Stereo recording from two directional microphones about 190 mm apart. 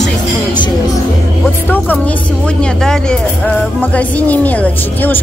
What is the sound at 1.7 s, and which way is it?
Speech, 10° left (ahead or behind).